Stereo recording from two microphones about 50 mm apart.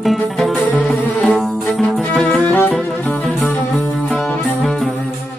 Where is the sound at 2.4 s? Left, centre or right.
Left.